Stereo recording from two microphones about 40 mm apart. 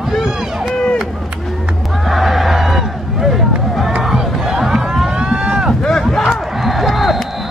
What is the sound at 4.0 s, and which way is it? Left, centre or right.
Crowd, centre.